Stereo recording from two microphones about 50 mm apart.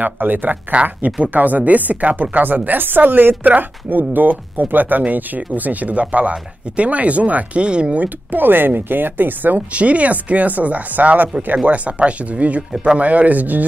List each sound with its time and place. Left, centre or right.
0.0 s a woman's voice: right
9.7 s a woman's voice: right